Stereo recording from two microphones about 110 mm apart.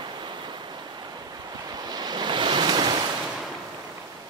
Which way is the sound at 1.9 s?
40° right (ahead or behind).